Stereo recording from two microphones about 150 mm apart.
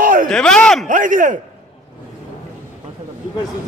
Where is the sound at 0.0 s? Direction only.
65° right (ahead or behind).